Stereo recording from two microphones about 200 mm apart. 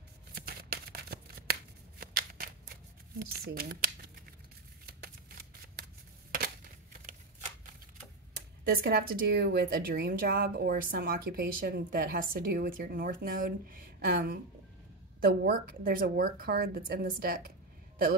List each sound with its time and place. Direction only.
0.3 s shuffling cards: 50° right (ahead or behind)
3.2 s a woman's voice: 50° right (ahead or behind)
6.3 s a sound: 45° right (ahead or behind)
8.6 s a woman's voice: 50° right (ahead or behind)